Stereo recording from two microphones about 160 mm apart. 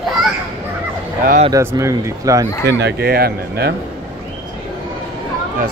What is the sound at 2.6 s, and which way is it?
Speech, 90° right.